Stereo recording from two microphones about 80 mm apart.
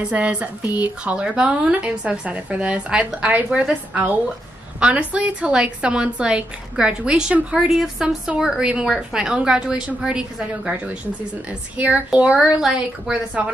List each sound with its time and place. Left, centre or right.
0.0 s a woman's voice: centre